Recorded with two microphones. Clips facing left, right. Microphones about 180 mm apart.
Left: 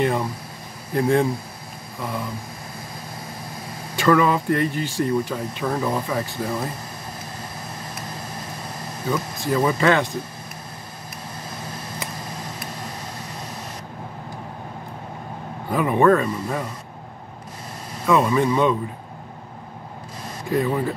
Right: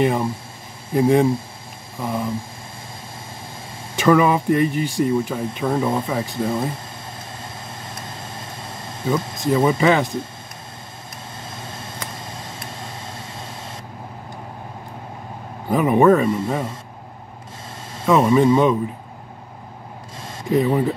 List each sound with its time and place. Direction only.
0.0 s speech: 25° right (ahead or behind)
3.9 s speech: 20° right (ahead or behind)
4.6 s speech: 10° right (ahead or behind)
5.4 s speech: 25° right (ahead or behind)
7.9 s air conditioning: 25° right (ahead or behind)
9.8 s speech: 15° right (ahead or behind)
11.5 s a sound: 25° right (ahead or behind)
15.7 s speech: 20° right (ahead or behind)
17.9 s speech: 25° right (ahead or behind)
20.2 s speech: 20° right (ahead or behind)